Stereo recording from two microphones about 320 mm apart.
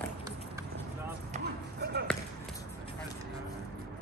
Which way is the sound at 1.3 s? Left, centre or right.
Right.